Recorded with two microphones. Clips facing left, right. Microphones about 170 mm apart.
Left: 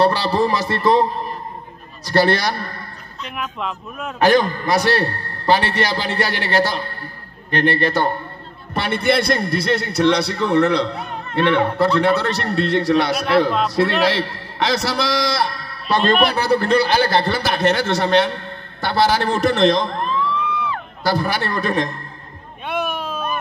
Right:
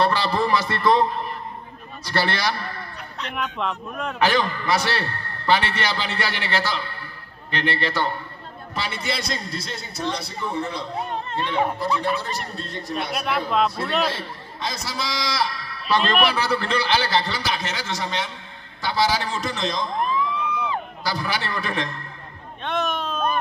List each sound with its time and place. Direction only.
0.0 s a man's voice: 35° left (ahead or behind)
3.3 s speech: 5° left (ahead or behind)
4.2 s a man's voice: 45° left (ahead or behind)
8.7 s a man's voice: 60° left (ahead or behind)
21.0 s a man's voice: 55° left (ahead or behind)
22.7 s a sound: 10° left (ahead or behind)